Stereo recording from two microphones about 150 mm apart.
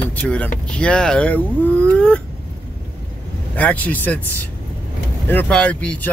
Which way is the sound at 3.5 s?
10° left (ahead or behind).